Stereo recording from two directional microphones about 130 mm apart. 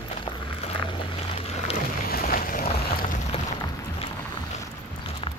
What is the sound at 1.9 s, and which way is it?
Boat, 90° left.